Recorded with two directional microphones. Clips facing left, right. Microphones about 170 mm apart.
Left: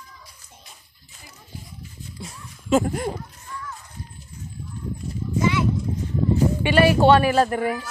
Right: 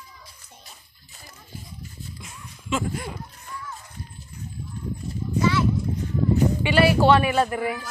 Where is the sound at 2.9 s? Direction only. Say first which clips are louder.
Left 6 dB; 45° left (ahead or behind).